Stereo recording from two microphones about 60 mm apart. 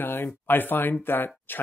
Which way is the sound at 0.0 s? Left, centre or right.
Left.